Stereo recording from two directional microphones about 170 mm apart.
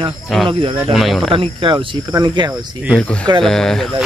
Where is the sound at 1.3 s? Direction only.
30° right (ahead or behind).